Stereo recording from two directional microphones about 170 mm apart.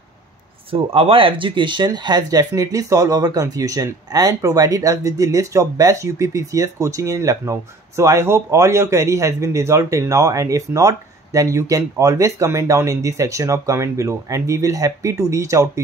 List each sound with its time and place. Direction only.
0.7 s speech: 35° right (ahead or behind); by 15.8 s 20° right (ahead or behind)